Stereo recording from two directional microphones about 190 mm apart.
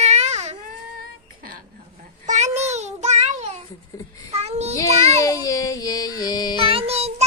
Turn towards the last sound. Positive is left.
turn(degrees=-35)  # may be behind; listen again after turning